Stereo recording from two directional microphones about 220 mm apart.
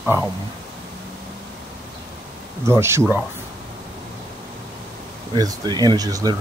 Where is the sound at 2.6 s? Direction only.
10° right (ahead or behind).